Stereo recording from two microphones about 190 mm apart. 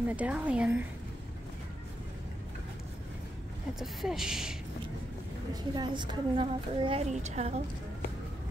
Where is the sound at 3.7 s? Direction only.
Centre (ahead or behind).